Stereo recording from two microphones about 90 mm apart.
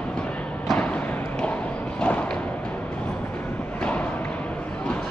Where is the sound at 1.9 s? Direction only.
15° left (ahead or behind).